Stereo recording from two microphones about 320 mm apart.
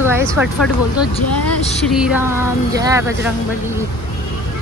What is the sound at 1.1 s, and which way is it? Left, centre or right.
Speech, centre.